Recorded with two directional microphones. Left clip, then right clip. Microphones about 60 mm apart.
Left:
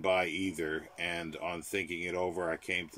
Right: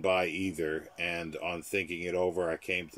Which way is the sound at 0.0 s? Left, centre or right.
Right.